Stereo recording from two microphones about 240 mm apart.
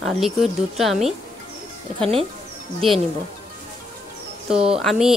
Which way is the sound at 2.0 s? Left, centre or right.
Right.